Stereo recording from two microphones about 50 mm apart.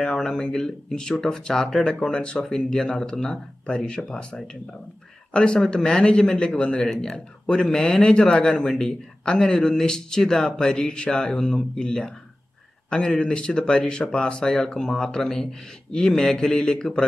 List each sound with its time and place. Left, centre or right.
0.0 s speech: centre